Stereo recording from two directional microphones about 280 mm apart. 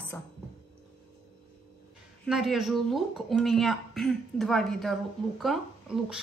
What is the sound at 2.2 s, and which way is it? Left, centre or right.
Speech, centre.